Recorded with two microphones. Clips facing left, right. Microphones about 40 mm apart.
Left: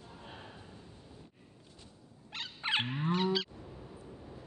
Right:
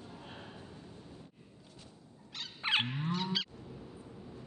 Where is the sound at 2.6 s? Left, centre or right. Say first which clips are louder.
Right 1 dB; centre.